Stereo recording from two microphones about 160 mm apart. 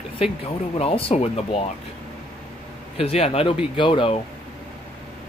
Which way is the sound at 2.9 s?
40° left (ahead or behind).